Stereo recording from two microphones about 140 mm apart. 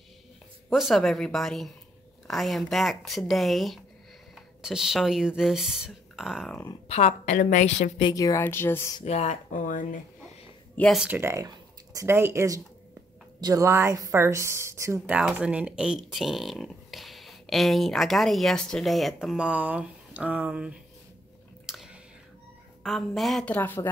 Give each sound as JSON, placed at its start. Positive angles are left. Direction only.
{"t": 0.7, "sound": "speech", "side_deg": 0}
{"t": 6.9, "sound": "a woman's voice", "side_deg": 55}
{"t": 8.0, "sound": "speech", "side_deg": 25}
{"t": 9.0, "sound": "speech", "side_deg": 50}
{"t": 9.5, "sound": "speech", "side_deg": 70}
{"t": 11.0, "sound": "a woman's voice", "side_deg": -15}
{"t": 15.1, "sound": "speech", "side_deg": -5}
{"t": 21.6, "sound": "chewing", "side_deg": -5}
{"t": 22.8, "sound": "speech", "side_deg": 0}